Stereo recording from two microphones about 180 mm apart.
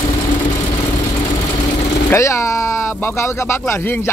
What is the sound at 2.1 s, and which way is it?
Speech, 15° left (ahead or behind).